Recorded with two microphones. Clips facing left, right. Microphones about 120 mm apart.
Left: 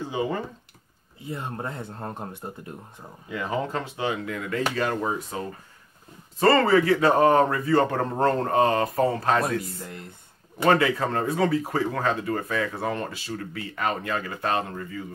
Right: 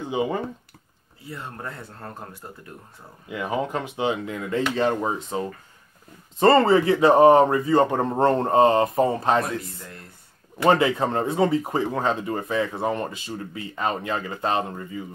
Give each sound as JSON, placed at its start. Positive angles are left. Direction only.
{"t": 0.0, "sound": "speech", "side_deg": -20}
{"t": 1.2, "sound": "speech", "side_deg": 20}
{"t": 3.3, "sound": "speech", "side_deg": -15}
{"t": 6.4, "sound": "speech", "side_deg": -25}